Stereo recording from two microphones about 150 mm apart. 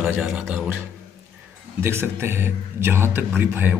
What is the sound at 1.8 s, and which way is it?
A man's voice, 15° right (ahead or behind).